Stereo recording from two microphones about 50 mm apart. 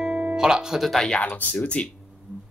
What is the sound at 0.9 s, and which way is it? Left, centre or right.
Speech, centre.